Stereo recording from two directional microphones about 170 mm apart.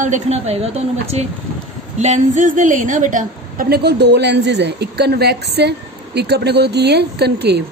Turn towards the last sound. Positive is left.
turn(degrees=-75)  # may be behind; listen again after turning